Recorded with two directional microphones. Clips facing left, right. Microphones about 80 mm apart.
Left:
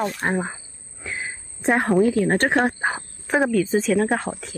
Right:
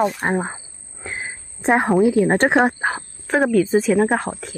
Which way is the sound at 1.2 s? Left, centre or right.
Right.